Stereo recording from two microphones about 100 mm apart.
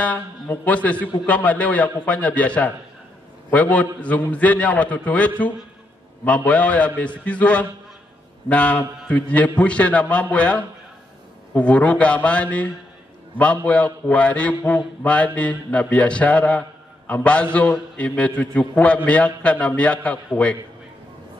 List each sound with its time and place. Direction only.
0.0 s a man's voice: 15° left (ahead or behind)